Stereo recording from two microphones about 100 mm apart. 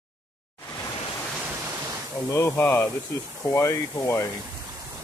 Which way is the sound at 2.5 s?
20° left (ahead or behind).